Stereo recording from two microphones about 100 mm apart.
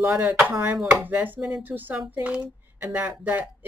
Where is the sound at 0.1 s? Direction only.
15° right (ahead or behind).